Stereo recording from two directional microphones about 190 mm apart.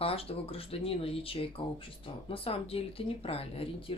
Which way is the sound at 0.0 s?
30° left (ahead or behind).